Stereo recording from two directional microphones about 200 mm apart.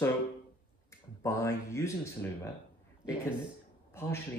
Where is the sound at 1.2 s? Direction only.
15° left (ahead or behind).